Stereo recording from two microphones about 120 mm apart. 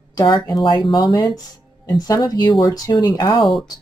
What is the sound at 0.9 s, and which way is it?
Speech, 30° left (ahead or behind).